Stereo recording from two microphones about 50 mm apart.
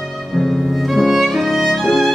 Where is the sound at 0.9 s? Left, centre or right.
Centre.